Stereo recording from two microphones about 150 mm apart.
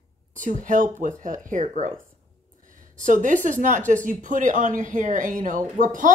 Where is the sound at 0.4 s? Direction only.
60° right (ahead or behind).